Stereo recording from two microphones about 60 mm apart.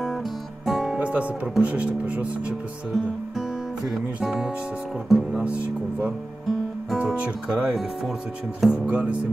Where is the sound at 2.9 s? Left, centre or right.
Centre.